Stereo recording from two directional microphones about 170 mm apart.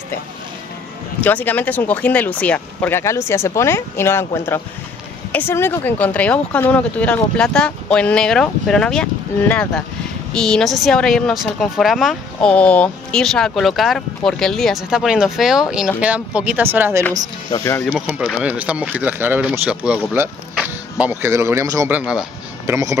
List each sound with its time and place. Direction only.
1.2 s a woman's voice: 10° left (ahead or behind); by 17.0 s 10° right (ahead or behind)
17.5 s speech: 15° left (ahead or behind)
17.9 s speech: 5° right (ahead or behind)
22.7 s speech: 20° right (ahead or behind)